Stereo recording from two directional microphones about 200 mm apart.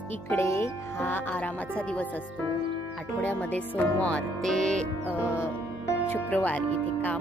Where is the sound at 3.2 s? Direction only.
5° left (ahead or behind).